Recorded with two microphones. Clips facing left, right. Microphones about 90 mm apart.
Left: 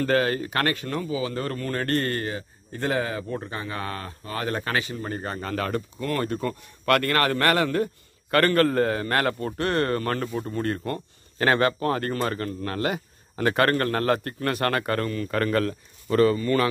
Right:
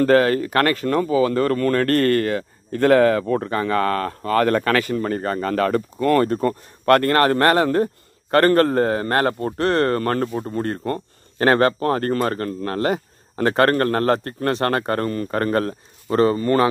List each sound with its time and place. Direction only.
0.0 s speech: 45° right (ahead or behind)